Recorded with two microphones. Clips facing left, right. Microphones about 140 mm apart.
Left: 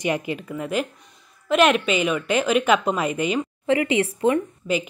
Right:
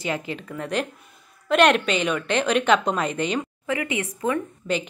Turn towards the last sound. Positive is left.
turn(degrees=0)  # may be behind; listen again after turning